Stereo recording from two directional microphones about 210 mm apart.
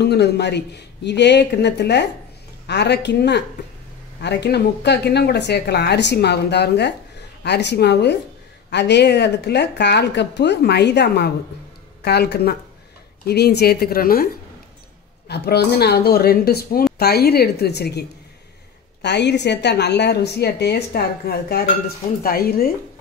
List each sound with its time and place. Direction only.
0.0 s a woman's voice: 50° left (ahead or behind)